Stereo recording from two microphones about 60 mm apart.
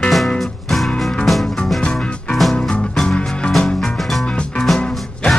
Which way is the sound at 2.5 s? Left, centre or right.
Centre.